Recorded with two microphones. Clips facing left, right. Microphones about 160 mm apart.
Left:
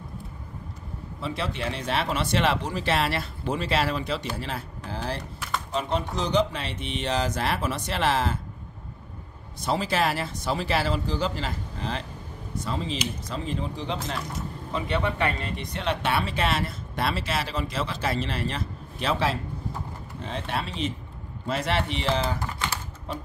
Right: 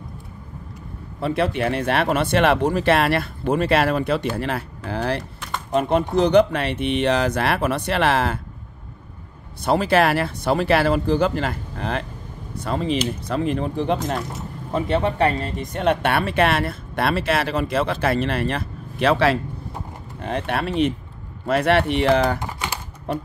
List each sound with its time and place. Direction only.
1.2 s speech: 60° right (ahead or behind)
5.7 s speech: 55° right (ahead or behind)
9.7 s speech: 60° right (ahead or behind)
14.7 s speech: 45° right (ahead or behind); by 22.4 s 60° right (ahead or behind)
22.4 s typing: 15° right (ahead or behind)
23.1 s speech: 60° right (ahead or behind)